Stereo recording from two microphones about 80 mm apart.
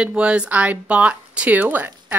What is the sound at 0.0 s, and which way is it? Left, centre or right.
Speech, centre.